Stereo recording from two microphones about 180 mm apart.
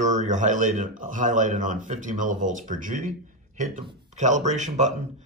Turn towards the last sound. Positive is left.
turn(degrees=-40)  # may be behind; listen again after turning